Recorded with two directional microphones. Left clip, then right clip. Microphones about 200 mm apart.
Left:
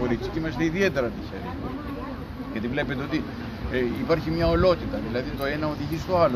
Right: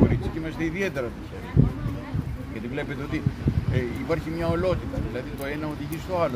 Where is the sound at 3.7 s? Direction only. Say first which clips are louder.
Left 5 dB; 10° right (ahead or behind).